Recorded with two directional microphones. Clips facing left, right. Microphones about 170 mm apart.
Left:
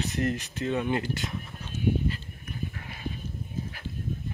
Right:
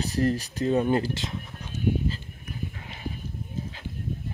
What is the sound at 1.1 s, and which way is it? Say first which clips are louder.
Speech: even; 20° right (ahead or behind).